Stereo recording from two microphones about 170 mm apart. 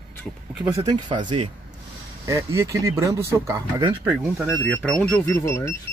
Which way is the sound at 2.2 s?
20° right (ahead or behind).